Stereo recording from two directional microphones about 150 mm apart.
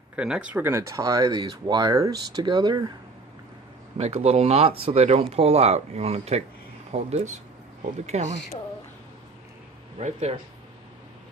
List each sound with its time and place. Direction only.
0.1 s speech: 5° right (ahead or behind); by 2.8 s 30° right (ahead or behind)
4.0 s speech: 45° right (ahead or behind)
9.9 s speech: 45° right (ahead or behind)